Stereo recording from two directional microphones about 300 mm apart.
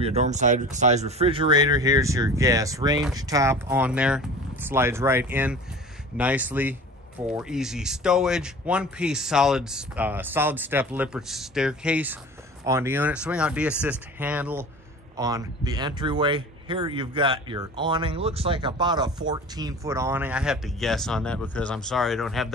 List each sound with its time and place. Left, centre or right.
0.0 s speech: right; by 22.5 s centre